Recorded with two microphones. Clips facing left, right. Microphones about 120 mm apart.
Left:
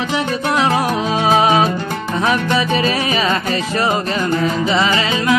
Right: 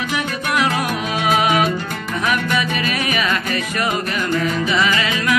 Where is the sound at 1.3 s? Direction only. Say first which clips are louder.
Left 3 dB; 30° left (ahead or behind).